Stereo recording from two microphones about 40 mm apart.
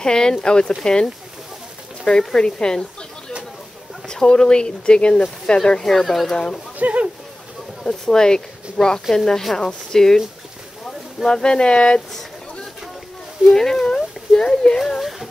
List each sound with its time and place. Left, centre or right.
0.0 s speech: centre
6.3 s speech: centre
6.8 s a sound: right
7.8 s speech: centre
11.2 s speech: centre
13.5 s speech: centre
15.0 s speech: centre